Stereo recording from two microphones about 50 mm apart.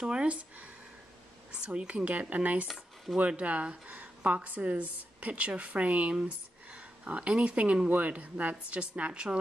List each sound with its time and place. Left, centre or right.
0.0 s a woman's voice: centre